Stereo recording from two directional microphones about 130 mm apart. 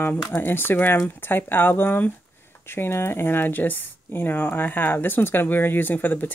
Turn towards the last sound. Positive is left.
turn(degrees=15)  # may be behind; listen again after turning